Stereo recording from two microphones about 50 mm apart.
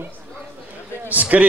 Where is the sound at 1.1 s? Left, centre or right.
Right.